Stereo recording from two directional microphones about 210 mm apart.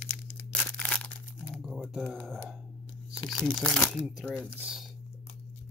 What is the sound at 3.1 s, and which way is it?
Tearing, 20° left (ahead or behind).